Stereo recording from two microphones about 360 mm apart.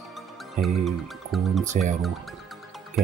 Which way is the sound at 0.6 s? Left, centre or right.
Centre.